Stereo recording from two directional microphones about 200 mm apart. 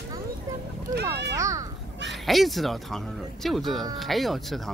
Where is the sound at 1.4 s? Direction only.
15° right (ahead or behind).